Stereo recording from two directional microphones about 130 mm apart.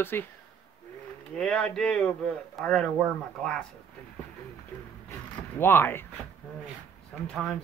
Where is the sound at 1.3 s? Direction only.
5° left (ahead or behind).